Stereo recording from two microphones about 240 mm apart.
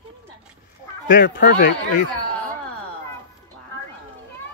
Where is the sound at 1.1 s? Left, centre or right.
Left.